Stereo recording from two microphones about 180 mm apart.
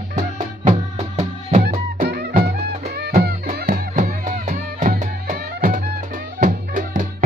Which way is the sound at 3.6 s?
50° right (ahead or behind).